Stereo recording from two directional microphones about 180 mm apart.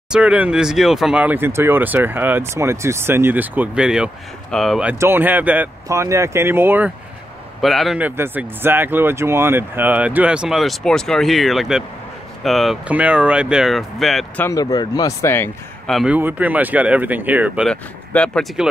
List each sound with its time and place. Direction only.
0.1 s speech: 5° right (ahead or behind)
4.9 s speech: 15° right (ahead or behind)
7.6 s speech: centre (ahead or behind)
14.4 s speech: 20° left (ahead or behind)
15.9 s speech: centre (ahead or behind)
17.6 s speech: 5° left (ahead or behind)